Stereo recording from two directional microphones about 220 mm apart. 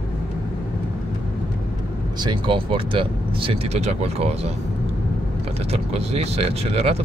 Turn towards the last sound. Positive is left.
turn(degrees=-25)  # may be behind; listen again after turning